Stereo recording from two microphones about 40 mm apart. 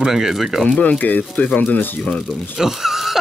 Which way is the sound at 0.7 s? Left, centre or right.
Left.